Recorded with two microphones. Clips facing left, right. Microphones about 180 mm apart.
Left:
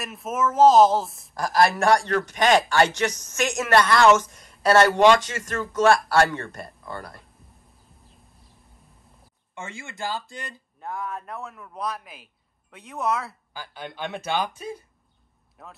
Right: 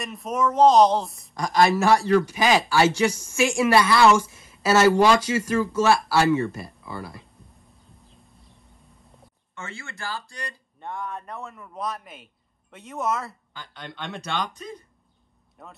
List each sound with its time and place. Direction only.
0.0 s a woman's voice: centre (ahead or behind)
9.6 s speech: 15° left (ahead or behind)
10.8 s a woman's voice: centre (ahead or behind)